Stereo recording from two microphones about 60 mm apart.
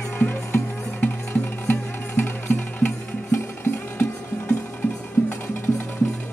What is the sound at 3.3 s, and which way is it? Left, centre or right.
Music, left.